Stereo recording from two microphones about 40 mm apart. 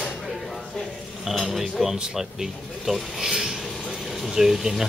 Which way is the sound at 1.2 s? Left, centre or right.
Centre.